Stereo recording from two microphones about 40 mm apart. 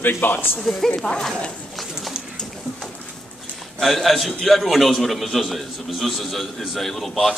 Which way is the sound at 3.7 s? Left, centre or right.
Centre.